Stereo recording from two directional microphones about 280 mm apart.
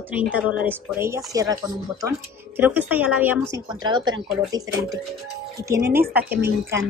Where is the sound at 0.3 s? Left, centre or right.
Centre.